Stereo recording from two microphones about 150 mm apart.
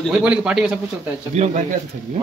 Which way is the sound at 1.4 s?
45° right (ahead or behind).